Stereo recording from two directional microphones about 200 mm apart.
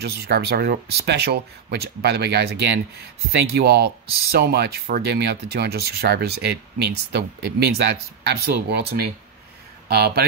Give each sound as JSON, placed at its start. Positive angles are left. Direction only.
{"t": 0.0, "sound": "speech", "side_deg": -50}